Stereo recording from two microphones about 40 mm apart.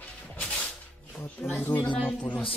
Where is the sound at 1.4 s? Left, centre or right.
Left.